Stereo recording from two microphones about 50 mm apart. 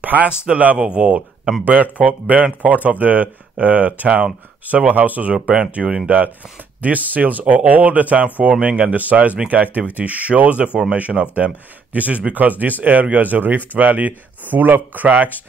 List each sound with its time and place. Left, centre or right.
0.0 s speech: right
1.6 s speech: right
5.5 s speech: centre
6.0 s speech: right